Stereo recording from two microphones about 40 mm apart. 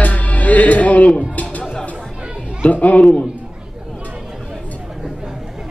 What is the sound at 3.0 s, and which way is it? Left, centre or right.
Speech, centre.